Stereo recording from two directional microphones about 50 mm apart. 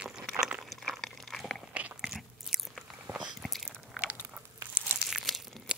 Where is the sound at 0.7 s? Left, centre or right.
Centre.